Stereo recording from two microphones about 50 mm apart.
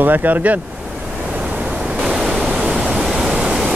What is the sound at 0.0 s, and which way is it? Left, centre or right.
Speech, right.